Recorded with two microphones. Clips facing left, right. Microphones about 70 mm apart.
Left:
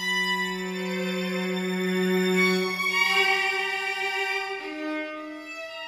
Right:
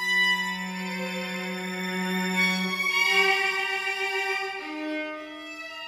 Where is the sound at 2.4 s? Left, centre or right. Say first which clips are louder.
Left 4 dB; left.